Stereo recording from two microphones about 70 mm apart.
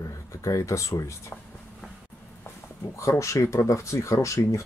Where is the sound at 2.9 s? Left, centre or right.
Left.